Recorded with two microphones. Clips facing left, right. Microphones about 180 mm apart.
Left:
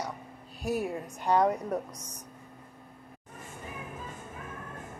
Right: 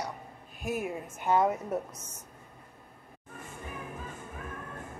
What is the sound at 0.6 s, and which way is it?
Speech, 35° left (ahead or behind).